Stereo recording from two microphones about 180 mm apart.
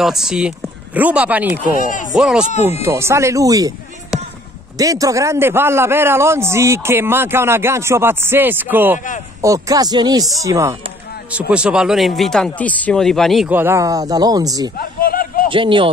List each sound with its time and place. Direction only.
0.0 s a man's voice: centre (ahead or behind)
1.8 s speech: 45° left (ahead or behind)
2.1 s speech: 5° right (ahead or behind)
2.8 s a man's voice: 15° right (ahead or behind)
4.7 s a man's voice: 20° right (ahead or behind); by 13.5 s centre (ahead or behind)
13.5 s speech: 10° right (ahead or behind)
14.8 s a sound: 55° left (ahead or behind)
15.5 s speech: 30° right (ahead or behind)